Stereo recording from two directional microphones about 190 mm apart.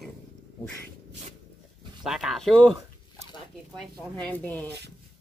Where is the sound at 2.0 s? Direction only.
Centre (ahead or behind).